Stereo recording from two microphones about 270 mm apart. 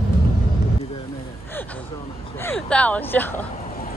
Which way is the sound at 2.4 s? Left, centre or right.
Centre.